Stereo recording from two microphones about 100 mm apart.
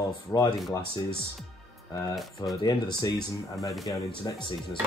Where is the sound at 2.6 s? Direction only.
40° left (ahead or behind).